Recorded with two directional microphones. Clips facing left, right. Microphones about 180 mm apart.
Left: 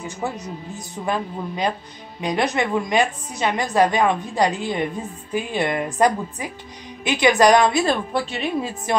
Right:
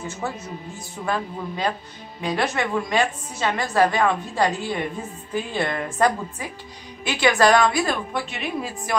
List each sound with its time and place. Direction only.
0.0 s a woman's voice: 15° left (ahead or behind)